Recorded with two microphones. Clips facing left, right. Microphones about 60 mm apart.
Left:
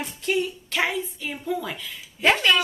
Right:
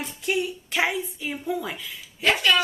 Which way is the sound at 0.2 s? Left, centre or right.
Centre.